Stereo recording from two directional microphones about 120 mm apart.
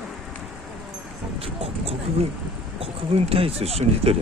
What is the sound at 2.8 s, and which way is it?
Speech, 50° right (ahead or behind).